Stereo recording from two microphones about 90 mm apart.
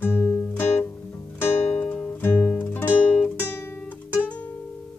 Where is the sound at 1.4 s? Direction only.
10° left (ahead or behind).